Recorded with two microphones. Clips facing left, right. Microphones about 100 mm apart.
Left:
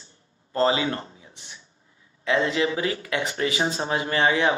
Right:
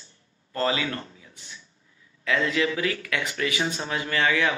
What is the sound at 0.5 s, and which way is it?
Speech, 25° left (ahead or behind).